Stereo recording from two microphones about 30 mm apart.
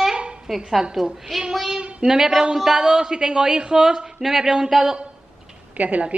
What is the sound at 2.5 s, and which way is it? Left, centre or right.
A woman's voice, centre.